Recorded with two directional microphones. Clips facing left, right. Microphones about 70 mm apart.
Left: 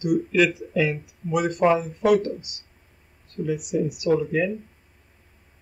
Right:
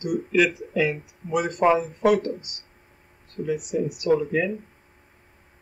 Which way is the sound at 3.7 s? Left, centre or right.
Centre.